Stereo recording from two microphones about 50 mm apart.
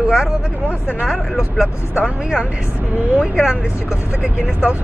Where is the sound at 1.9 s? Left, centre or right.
Centre.